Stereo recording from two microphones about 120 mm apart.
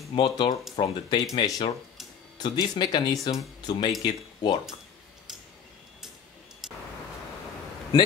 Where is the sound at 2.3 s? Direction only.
35° left (ahead or behind).